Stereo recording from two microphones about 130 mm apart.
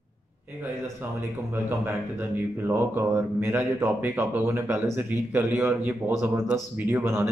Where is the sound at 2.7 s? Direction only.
20° right (ahead or behind).